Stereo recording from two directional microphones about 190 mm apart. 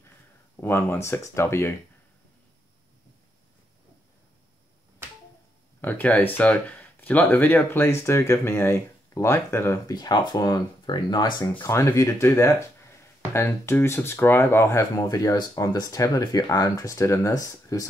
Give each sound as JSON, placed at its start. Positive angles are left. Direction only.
{"t": 0.6, "sound": "speech", "side_deg": 10}
{"t": 5.8, "sound": "speech", "side_deg": 10}